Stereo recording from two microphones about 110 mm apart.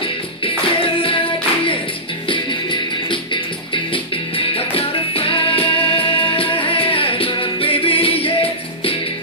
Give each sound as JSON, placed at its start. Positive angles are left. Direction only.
{"t": 0.0, "sound": "music", "side_deg": 55}
{"t": 2.2, "sound": "music", "side_deg": 50}